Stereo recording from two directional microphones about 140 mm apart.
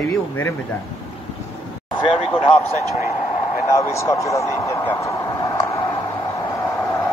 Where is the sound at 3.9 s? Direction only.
20° left (ahead or behind).